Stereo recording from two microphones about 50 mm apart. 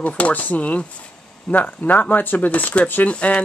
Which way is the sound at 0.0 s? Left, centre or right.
Left.